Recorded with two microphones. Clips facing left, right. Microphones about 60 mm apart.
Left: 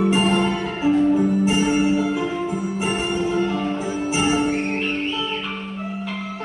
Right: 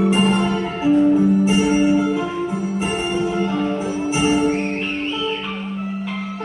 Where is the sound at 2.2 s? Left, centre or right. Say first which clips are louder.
Right 1 dB; centre.